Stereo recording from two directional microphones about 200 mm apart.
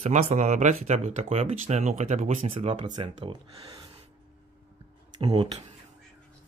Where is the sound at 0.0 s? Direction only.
35° right (ahead or behind).